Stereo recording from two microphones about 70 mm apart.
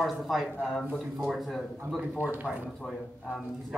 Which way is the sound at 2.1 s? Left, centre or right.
Right.